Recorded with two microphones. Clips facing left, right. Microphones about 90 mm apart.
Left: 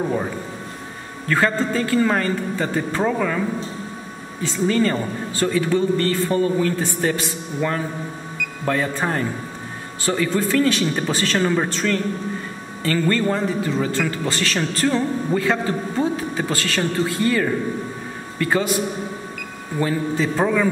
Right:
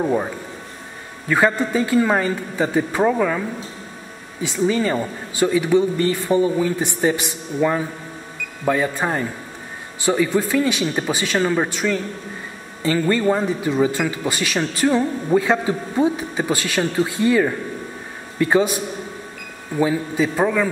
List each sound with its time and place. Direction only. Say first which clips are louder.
1.3 s a man's voice: right 2 dB; 15° right (ahead or behind)
19.8 s a man's voice: right 2 dB; 10° right (ahead or behind)